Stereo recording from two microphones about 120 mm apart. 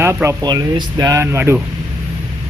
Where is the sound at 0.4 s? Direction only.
35° right (ahead or behind); by 1.6 s 20° right (ahead or behind).